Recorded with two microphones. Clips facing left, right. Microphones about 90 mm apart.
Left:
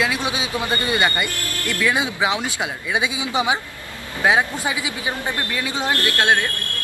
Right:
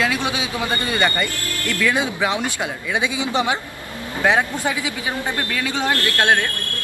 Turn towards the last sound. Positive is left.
turn(degrees=15)  # may be behind; listen again after turning